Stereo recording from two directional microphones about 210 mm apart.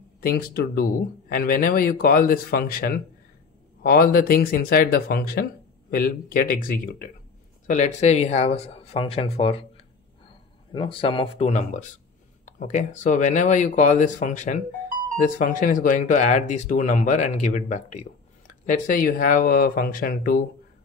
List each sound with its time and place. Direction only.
0.2 s speech: 45° left (ahead or behind)